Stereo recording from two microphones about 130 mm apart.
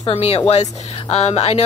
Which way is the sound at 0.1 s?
50° left (ahead or behind).